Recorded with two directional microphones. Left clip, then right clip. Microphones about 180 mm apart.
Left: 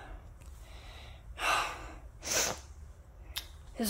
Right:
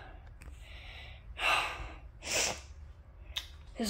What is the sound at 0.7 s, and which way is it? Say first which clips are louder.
Gasp: right 3 dB; 5° left (ahead or behind).